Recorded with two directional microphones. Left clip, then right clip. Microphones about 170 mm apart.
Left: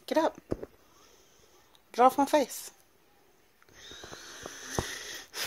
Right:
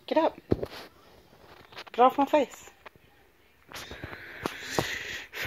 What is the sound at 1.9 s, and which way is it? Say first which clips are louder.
Speech: right 1 dB; 30° left (ahead or behind).